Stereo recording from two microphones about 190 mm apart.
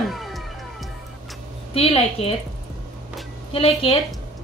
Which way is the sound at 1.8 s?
30° left (ahead or behind).